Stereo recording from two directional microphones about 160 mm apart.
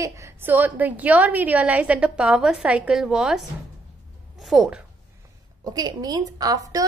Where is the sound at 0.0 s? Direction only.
20° right (ahead or behind).